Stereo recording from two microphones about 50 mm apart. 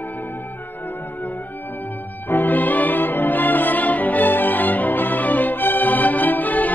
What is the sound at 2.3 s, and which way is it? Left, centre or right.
Music, left.